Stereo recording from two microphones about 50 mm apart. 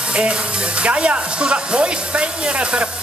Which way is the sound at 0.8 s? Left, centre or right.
Right.